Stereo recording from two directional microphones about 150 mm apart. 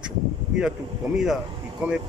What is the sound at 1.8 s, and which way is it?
Speech, 5° right (ahead or behind).